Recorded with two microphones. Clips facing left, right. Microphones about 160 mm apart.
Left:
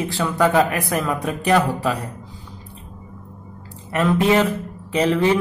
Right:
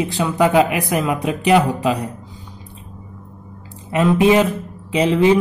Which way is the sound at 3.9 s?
15° right (ahead or behind).